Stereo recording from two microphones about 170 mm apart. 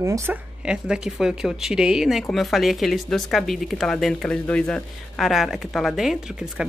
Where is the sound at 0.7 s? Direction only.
5° right (ahead or behind).